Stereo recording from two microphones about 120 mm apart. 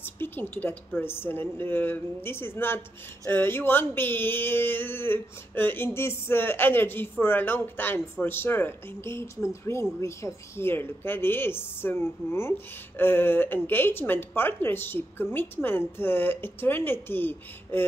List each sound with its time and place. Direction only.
0.0 s a woman's voice: 15° left (ahead or behind)